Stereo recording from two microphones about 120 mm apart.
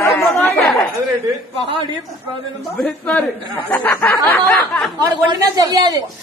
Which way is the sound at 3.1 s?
15° left (ahead or behind).